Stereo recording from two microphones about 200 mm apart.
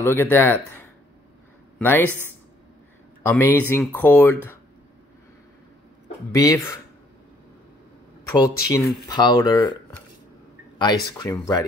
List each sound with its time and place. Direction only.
0.0 s speech: 10° left (ahead or behind)
1.8 s speech: 10° left (ahead or behind)
3.3 s speech: 10° left (ahead or behind)
6.3 s speech: 15° left (ahead or behind)
8.3 s speech: 15° left (ahead or behind)
10.8 s speech: 20° left (ahead or behind)